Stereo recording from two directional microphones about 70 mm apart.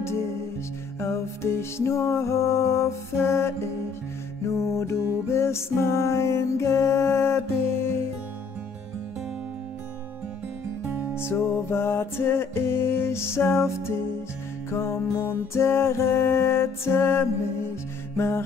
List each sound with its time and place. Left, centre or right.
0.0 s music: left
10.8 s music: right
11.1 s music: left